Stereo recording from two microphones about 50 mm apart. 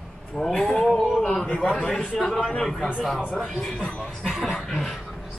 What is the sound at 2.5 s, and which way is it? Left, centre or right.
A man's voice, centre.